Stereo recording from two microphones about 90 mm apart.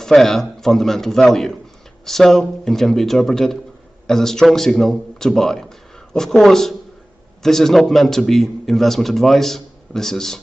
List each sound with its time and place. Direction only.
0.0 s speech: 5° left (ahead or behind)